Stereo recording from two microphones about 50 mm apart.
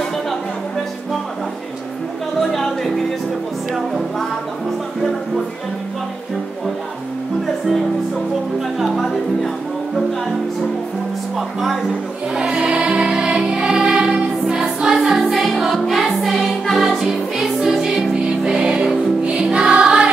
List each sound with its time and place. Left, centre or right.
2.5 s music: centre
8.7 s music: centre
11.3 s music: centre
12.4 s music: centre